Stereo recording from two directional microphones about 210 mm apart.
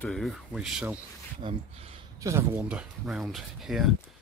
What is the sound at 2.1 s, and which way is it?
Speech, 15° right (ahead or behind).